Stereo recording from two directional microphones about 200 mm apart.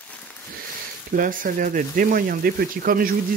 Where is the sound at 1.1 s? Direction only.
45° right (ahead or behind).